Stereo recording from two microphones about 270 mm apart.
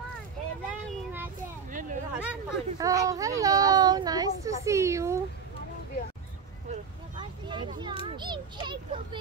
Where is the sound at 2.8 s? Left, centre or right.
Centre.